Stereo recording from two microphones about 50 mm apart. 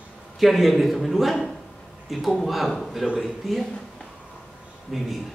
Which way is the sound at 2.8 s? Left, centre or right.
Centre.